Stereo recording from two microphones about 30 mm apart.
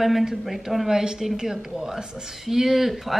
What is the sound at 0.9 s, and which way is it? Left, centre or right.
Speech, centre.